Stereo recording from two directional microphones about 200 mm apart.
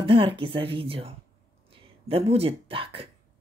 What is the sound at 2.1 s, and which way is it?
Speech, 30° right (ahead or behind).